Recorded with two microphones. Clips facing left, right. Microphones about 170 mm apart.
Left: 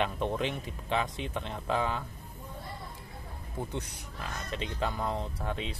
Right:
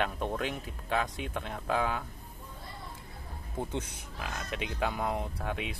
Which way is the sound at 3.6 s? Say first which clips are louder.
Right 2 dB; 15° right (ahead or behind).